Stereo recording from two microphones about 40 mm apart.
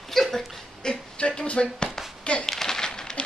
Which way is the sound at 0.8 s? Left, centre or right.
Left.